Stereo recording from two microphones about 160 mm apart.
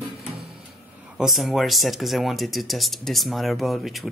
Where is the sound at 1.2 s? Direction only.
Centre (ahead or behind).